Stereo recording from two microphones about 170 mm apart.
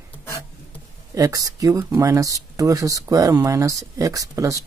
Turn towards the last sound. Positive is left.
turn(degrees=-20)  # may be behind; listen again after turning